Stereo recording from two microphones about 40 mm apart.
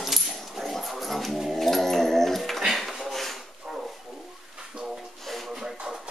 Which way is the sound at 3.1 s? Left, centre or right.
Centre.